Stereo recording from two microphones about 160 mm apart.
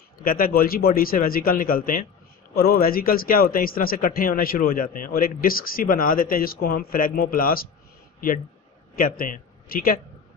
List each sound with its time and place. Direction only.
0.2 s speech: 65° left (ahead or behind)
8.9 s speech: 60° left (ahead or behind)